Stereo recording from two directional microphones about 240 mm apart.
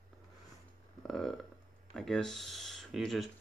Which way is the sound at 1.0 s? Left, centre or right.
Centre.